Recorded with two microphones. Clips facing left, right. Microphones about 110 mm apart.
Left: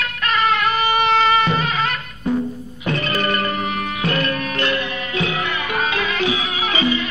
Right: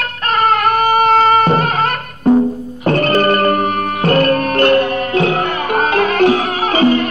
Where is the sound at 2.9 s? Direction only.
50° right (ahead or behind).